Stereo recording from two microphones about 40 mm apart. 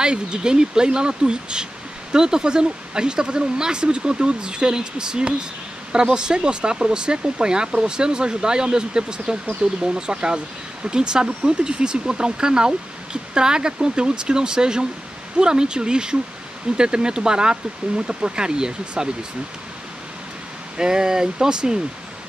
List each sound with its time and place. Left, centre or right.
0.0 s speech: right
20.7 s speech: centre